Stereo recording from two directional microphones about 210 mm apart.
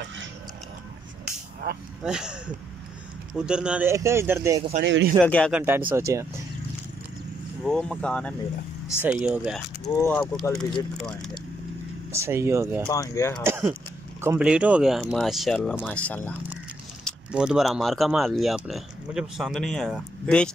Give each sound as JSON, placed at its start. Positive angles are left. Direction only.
{"t": 1.6, "sound": "speech", "side_deg": -50}
{"t": 2.0, "sound": "speech", "side_deg": -5}
{"t": 4.8, "sound": "speech", "side_deg": -60}
{"t": 5.2, "sound": "speech", "side_deg": 5}
{"t": 5.9, "sound": "speech", "side_deg": -15}
{"t": 7.6, "sound": "speech", "side_deg": 5}
{"t": 9.0, "sound": "speech", "side_deg": -5}
{"t": 10.0, "sound": "speech", "side_deg": 10}
{"t": 12.1, "sound": "speech", "side_deg": -15}
{"t": 12.8, "sound": "speech", "side_deg": 15}
{"t": 13.4, "sound": "speech", "side_deg": -10}